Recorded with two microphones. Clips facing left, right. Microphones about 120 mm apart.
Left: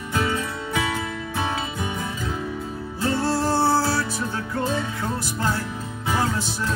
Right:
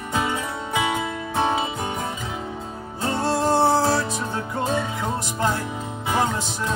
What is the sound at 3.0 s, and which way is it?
Music, 25° right (ahead or behind).